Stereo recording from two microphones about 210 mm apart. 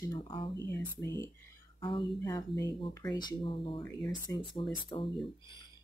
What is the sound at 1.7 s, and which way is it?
Speech, 25° left (ahead or behind).